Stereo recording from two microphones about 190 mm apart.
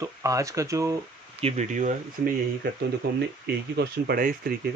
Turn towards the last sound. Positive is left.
turn(degrees=-50)  # may be behind; listen again after turning